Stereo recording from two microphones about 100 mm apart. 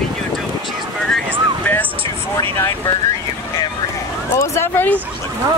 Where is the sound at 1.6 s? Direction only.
20° left (ahead or behind).